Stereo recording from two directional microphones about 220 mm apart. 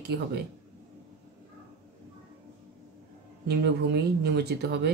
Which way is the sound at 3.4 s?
50° right (ahead or behind).